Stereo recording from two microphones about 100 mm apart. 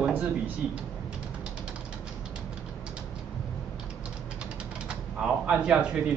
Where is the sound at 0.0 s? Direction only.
10° right (ahead or behind).